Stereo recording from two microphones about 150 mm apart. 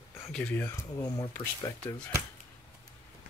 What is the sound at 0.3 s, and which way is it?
Speech, 10° left (ahead or behind).